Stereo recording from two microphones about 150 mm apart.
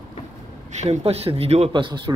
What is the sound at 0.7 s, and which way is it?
Speech, 50° right (ahead or behind).